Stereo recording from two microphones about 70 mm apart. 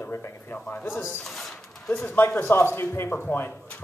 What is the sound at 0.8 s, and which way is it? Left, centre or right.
A man's voice, left.